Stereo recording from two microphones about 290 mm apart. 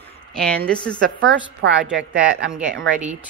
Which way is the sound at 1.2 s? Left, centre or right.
Right.